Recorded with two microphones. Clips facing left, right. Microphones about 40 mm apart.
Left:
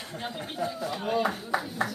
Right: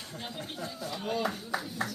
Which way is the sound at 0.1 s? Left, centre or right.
Centre.